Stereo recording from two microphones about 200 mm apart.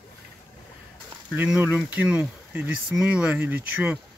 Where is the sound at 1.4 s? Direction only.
5° right (ahead or behind).